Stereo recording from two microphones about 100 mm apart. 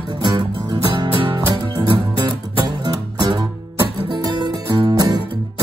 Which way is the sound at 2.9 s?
40° right (ahead or behind).